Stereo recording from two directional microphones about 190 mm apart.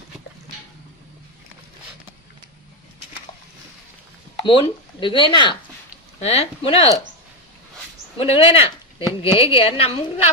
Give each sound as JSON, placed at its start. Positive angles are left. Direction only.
{"t": 4.4, "sound": "speech", "side_deg": 25}
{"t": 8.2, "sound": "speech", "side_deg": 30}